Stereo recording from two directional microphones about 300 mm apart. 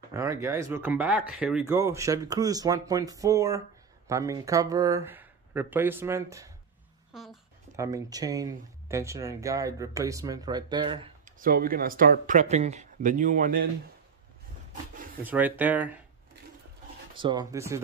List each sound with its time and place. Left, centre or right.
0.1 s speech: centre; by 13.7 s right
15.2 s speech: centre
17.1 s speech: centre